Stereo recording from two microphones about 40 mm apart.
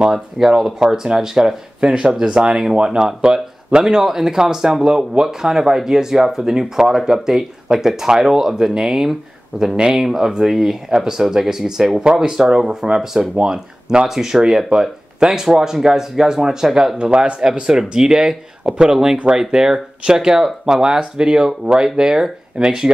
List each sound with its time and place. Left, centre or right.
0.1 s speech: centre